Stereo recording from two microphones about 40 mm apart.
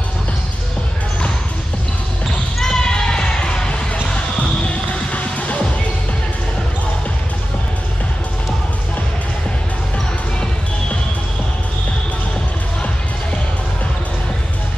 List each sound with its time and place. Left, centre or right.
2.6 s basketball bounce: centre
4.4 s music: left